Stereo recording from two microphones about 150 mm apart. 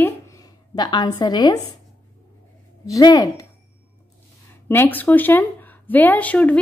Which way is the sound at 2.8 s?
25° left (ahead or behind).